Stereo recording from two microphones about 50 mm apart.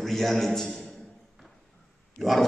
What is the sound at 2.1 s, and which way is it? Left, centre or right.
Dog, centre.